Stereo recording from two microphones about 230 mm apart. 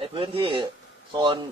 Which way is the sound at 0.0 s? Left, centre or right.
Right.